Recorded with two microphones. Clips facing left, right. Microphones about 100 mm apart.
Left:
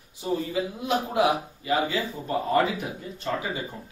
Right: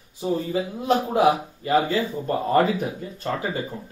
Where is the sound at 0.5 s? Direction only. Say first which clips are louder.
Right 4 dB; 40° right (ahead or behind).